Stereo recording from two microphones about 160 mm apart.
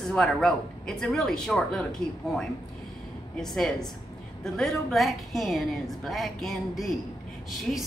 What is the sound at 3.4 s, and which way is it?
A woman's voice, 5° left (ahead or behind).